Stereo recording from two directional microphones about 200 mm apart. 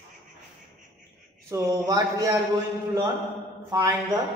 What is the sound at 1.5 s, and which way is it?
Speech, 15° right (ahead or behind).